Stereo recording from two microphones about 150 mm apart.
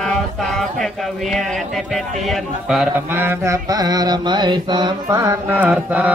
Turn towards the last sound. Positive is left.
turn(degrees=-10)  # may be behind; listen again after turning